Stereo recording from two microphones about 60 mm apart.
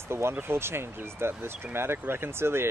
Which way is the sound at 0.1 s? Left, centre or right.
Right.